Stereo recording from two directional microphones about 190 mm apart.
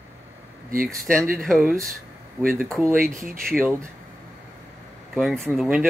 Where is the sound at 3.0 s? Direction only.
45° right (ahead or behind).